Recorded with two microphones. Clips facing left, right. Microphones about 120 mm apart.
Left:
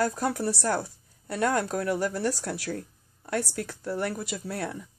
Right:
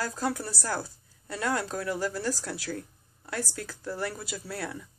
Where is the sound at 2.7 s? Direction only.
25° left (ahead or behind).